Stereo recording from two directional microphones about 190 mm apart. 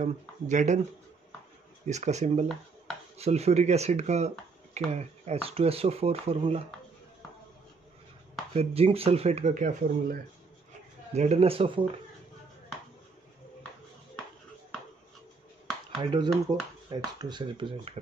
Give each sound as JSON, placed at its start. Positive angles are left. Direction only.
{"t": 0.0, "sound": "speech", "side_deg": -40}
{"t": 1.9, "sound": "speech", "side_deg": -35}
{"t": 8.5, "sound": "speech", "side_deg": -30}
{"t": 11.1, "sound": "speech", "side_deg": -35}
{"t": 16.0, "sound": "speech", "side_deg": -25}